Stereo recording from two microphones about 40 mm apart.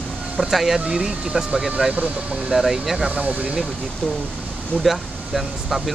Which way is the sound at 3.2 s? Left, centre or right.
Right.